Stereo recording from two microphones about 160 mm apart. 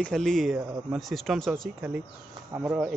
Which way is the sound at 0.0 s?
Centre (ahead or behind).